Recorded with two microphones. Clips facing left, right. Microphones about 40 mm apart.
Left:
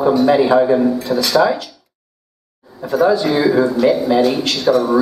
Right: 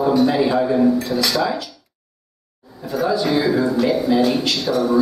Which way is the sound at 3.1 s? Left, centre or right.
Centre.